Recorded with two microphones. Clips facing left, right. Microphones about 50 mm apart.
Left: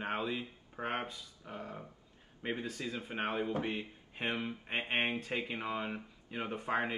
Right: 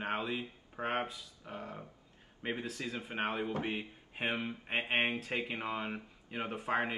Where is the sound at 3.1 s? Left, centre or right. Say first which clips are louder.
Even; centre.